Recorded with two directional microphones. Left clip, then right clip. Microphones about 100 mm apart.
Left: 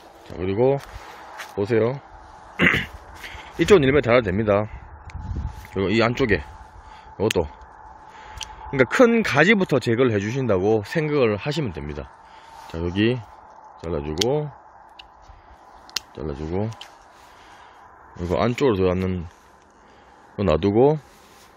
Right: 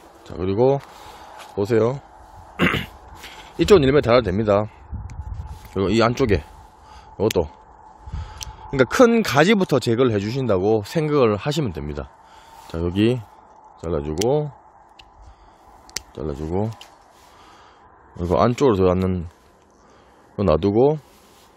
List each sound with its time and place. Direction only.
0.3 s speech: 30° right (ahead or behind)
2.5 s a sound: 25° right (ahead or behind)
8.5 s speech: 25° right (ahead or behind)
11.1 s speech: 35° right (ahead or behind)
16.2 s speech: 20° right (ahead or behind)
18.1 s speech: 40° right (ahead or behind)
20.3 s speech: 20° right (ahead or behind)